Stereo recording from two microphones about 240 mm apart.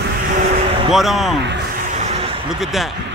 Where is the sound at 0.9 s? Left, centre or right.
Centre.